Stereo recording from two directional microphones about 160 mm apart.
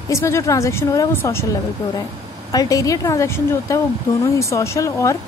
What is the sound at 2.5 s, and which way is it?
A woman's voice, 20° left (ahead or behind).